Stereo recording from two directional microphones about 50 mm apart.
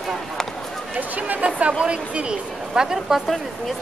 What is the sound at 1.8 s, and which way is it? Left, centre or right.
Speech, right.